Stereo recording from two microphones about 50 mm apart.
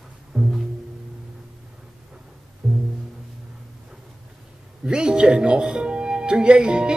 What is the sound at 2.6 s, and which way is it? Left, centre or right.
Music, right.